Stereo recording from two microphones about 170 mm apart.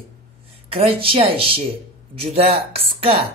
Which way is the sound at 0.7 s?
35° right (ahead or behind).